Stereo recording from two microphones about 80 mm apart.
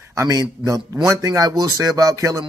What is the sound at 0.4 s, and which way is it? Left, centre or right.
Speech, right.